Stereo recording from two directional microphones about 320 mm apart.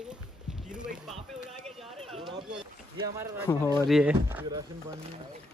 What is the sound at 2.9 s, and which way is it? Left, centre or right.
Speech, centre.